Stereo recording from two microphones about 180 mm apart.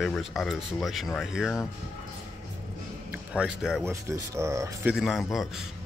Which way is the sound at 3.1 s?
5° right (ahead or behind).